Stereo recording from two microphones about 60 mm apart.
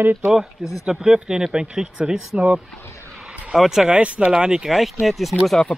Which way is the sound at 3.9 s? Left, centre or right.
Centre.